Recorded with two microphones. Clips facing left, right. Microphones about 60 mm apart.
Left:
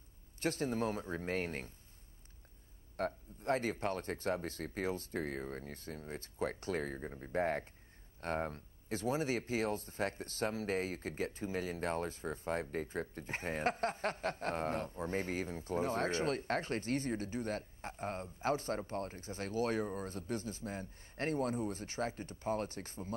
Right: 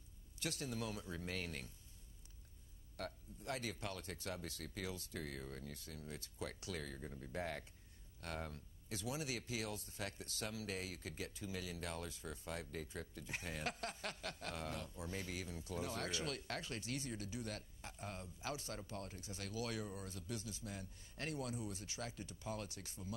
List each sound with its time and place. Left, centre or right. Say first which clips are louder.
0.4 s speech: left 9 dB; left
3.0 s speech: left 10 dB; left